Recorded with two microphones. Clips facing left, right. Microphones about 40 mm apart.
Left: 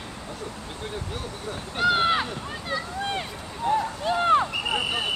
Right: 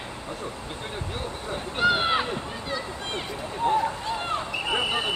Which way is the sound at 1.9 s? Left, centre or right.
Centre.